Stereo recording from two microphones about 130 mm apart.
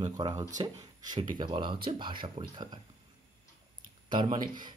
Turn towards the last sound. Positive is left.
turn(degrees=-35)  # may be behind; listen again after turning